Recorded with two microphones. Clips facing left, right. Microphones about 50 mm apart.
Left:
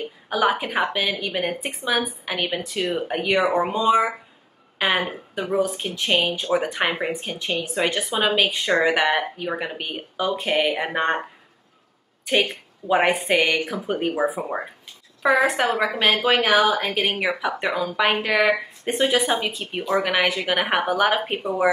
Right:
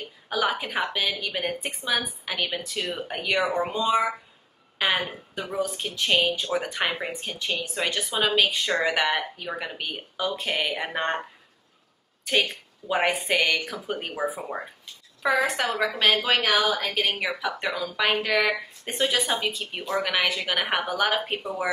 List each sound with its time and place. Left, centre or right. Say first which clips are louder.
0.0 s a woman's voice: left 5 dB; centre
12.3 s a woman's voice: left 3 dB; left
13.6 s speech: left 6 dB; left
13.8 s speech: left 6 dB; centre